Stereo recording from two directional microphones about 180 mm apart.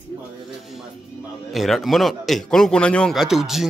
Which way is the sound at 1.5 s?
Centre (ahead or behind).